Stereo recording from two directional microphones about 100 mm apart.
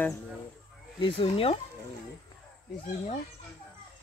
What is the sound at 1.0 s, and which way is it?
Speech, 60° left (ahead or behind).